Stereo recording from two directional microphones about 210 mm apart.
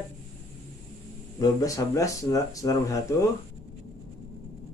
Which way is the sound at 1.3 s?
15° left (ahead or behind).